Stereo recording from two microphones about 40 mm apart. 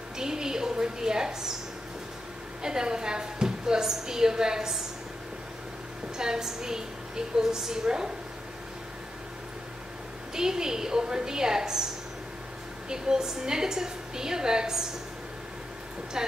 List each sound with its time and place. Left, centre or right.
0.2 s a woman's voice: centre
2.6 s a woman's voice: centre
6.1 s a woman's voice: centre
10.3 s a woman's voice: centre
12.9 s a woman's voice: centre
16.2 s a woman's voice: centre